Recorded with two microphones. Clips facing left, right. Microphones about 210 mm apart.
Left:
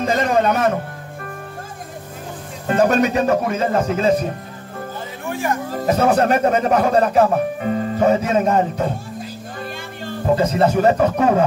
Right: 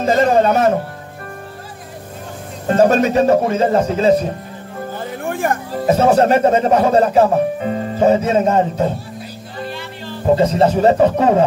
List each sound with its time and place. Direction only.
0.0 s speech: 35° right (ahead or behind)
2.7 s speech: 35° right (ahead or behind)
5.2 s music: 50° right (ahead or behind)
5.9 s speech: 30° right (ahead or behind)
10.3 s speech: 30° right (ahead or behind)